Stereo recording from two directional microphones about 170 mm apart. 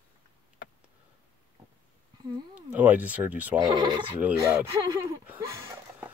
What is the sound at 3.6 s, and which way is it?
Speech, 30° right (ahead or behind).